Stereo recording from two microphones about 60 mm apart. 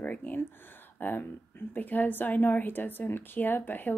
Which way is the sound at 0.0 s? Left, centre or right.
Left.